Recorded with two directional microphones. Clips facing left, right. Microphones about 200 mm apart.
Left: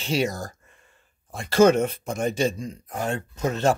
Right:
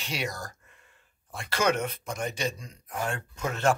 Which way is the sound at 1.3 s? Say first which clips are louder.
Left 12 dB; 45° left (ahead or behind).